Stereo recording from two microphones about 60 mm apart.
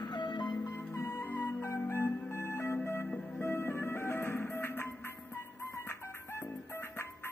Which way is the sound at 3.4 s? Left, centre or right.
Left.